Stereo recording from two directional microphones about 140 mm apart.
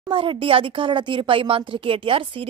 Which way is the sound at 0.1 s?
40° right (ahead or behind).